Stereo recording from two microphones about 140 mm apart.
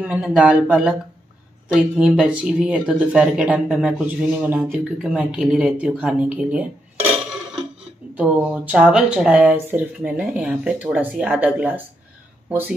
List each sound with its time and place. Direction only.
0.0 s speech: 5° right (ahead or behind)
2.0 s speech: 5° right (ahead or behind)
8.2 s speech: 10° right (ahead or behind)